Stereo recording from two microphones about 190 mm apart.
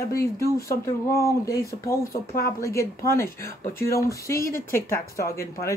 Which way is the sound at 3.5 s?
45° left (ahead or behind).